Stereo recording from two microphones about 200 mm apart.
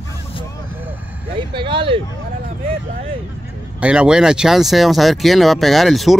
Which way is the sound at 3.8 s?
5° right (ahead or behind).